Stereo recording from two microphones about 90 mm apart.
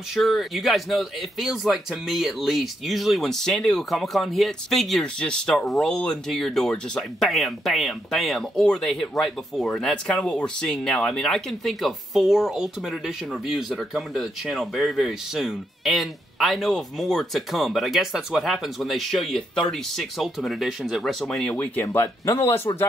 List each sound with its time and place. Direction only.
0.1 s speech: centre (ahead or behind)
21.5 s speech: 15° left (ahead or behind)
21.8 s speech: 30° left (ahead or behind)